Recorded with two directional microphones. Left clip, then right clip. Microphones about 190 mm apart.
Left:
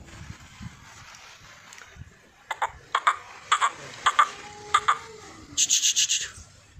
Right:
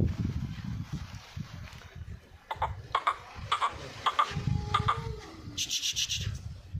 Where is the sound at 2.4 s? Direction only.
5° left (ahead or behind).